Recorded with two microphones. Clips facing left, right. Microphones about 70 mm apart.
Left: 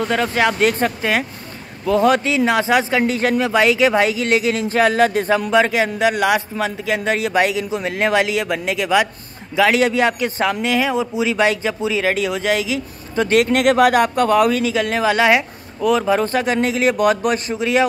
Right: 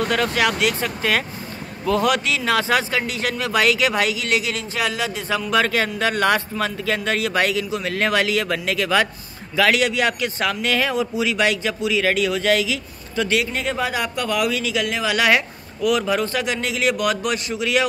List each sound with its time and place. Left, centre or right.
0.1 s speech: left
1.9 s speech: left
5.5 s speech: centre
9.6 s speech: left
13.3 s speech: left
14.0 s speech: left